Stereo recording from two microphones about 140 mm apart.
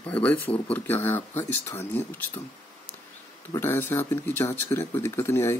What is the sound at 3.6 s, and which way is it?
Speech, 15° left (ahead or behind).